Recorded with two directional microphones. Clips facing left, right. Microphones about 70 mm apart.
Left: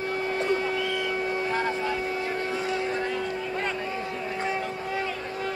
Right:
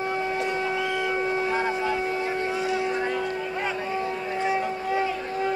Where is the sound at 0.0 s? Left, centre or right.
Right.